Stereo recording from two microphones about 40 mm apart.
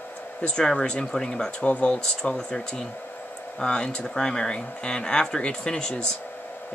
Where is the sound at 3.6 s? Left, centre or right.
Left.